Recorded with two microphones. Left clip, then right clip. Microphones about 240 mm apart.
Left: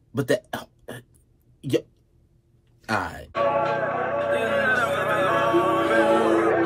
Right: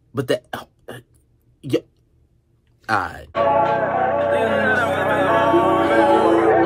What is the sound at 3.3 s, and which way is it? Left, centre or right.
Music, right.